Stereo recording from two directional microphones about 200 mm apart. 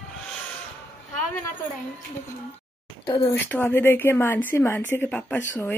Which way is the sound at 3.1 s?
25° left (ahead or behind).